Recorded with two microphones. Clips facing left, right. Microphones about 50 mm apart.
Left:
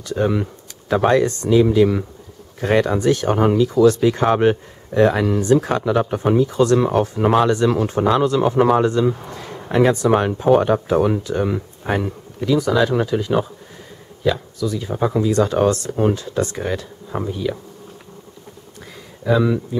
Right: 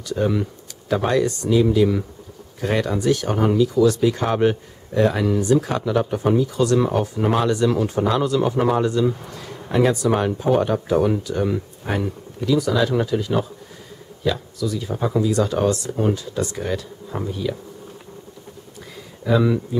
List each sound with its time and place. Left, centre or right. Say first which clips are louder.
0.3 s speech: left 1 dB; left
6.8 s speech: left 3 dB; left
15.3 s speech: left 3 dB; left
16.6 s speech: left 1 dB; left
19.2 s speech: left 1 dB; centre